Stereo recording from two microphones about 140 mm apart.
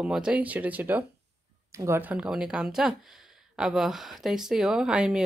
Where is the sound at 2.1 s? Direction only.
5° right (ahead or behind).